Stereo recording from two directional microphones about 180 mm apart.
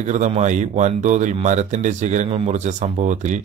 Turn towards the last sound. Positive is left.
turn(degrees=-40)  # may be behind; listen again after turning